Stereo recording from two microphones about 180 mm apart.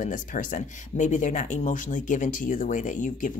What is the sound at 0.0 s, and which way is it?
Speech, 45° left (ahead or behind).